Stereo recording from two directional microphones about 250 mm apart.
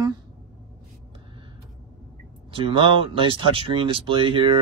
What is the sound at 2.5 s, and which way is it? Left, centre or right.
A man's voice, right.